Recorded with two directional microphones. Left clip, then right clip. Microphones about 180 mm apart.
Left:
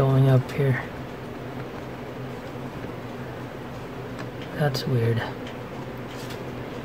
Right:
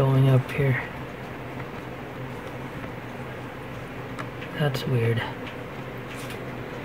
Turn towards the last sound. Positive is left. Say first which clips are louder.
# even
turn(degrees=5)  # may be behind; listen again after turning